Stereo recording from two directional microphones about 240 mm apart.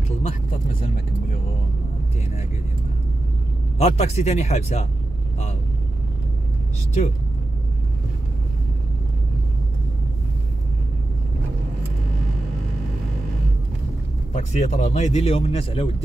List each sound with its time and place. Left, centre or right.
3.7 s speech: left
14.3 s speech: left